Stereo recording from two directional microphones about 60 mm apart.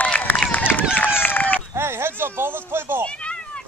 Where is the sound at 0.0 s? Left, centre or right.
Left.